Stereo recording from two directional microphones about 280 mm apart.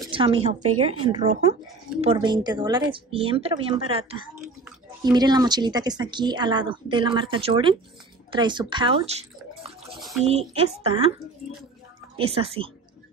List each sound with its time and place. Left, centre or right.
0.1 s speech: centre
0.6 s speech: right
0.8 s speech: right
5.0 s speech: centre
9.9 s speech: centre
10.3 s speech: right
12.2 s speech: centre